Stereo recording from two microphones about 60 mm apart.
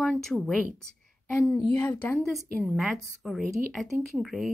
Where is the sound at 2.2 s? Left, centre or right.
Centre.